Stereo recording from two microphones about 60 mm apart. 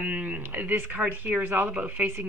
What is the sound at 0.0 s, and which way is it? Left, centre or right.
A woman's voice, right.